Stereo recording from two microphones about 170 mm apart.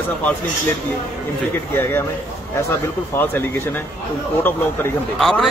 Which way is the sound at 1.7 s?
15° left (ahead or behind).